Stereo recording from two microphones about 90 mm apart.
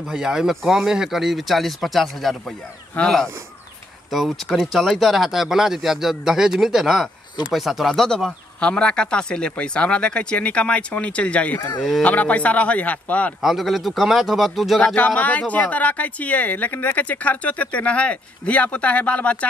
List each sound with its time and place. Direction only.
0.1 s speech: 5° right (ahead or behind); by 13.3 s 15° left (ahead or behind)
13.4 s speech: 5° right (ahead or behind)
15.0 s speech: 15° left (ahead or behind)